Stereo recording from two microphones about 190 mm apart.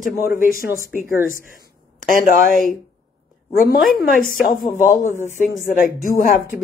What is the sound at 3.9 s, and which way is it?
Speech, 50° left (ahead or behind).